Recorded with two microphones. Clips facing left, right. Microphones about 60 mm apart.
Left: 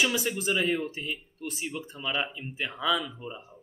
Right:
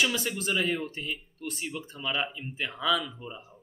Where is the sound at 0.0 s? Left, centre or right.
Centre.